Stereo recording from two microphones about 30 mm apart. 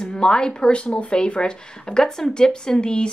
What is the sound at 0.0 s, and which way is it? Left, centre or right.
Speech, left.